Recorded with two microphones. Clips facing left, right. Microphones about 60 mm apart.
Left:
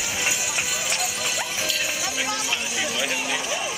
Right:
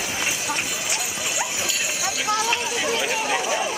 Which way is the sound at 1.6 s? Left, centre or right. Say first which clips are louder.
Even; right.